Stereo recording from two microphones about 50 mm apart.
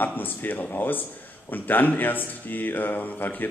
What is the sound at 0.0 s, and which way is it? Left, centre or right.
Speech, left.